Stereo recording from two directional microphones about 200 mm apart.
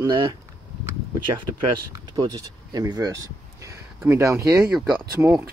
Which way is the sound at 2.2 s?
20° right (ahead or behind).